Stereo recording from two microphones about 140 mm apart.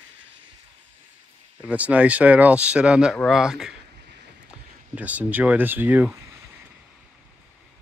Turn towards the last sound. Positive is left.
turn(degrees=-15)  # may be behind; listen again after turning